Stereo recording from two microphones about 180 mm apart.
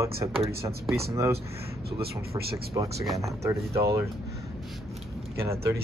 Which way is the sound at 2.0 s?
60° right (ahead or behind).